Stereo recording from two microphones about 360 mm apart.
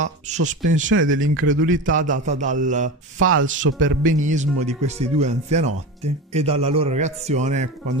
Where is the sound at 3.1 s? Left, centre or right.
Right.